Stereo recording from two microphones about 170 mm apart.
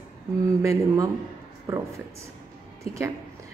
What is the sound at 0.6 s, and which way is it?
Speech, 20° right (ahead or behind).